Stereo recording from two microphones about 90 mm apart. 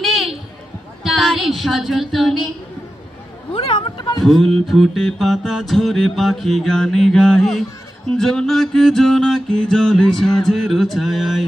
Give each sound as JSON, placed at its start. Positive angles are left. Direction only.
{"t": 0.0, "sound": "a sound", "side_deg": 0}
{"t": 1.0, "sound": "speech", "side_deg": 0}
{"t": 3.5, "sound": "speech", "side_deg": 80}
{"t": 4.2, "sound": "music", "side_deg": 5}